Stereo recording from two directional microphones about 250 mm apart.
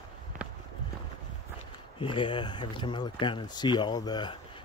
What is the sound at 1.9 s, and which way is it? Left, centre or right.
Speech, centre.